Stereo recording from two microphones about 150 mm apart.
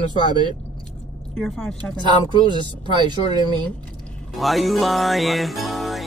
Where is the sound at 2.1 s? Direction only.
30° right (ahead or behind).